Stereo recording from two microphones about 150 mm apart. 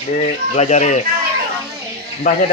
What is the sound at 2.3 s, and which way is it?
Speech, 55° left (ahead or behind).